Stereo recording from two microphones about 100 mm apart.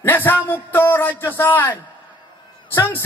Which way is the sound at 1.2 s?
20° left (ahead or behind).